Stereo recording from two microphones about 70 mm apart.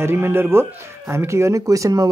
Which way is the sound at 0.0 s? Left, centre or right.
Right.